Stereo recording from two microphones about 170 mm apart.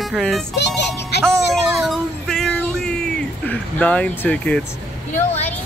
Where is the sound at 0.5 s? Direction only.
90° left.